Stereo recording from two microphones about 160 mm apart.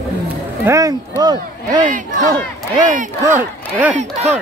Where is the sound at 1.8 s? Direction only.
55° right (ahead or behind).